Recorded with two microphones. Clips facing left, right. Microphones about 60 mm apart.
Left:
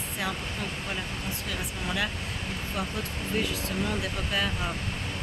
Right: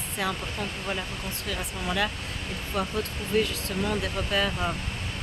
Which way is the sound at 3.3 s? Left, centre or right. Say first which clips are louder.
Right 5 dB; centre.